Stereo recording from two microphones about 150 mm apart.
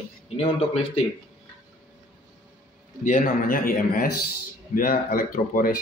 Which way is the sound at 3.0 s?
60° left (ahead or behind).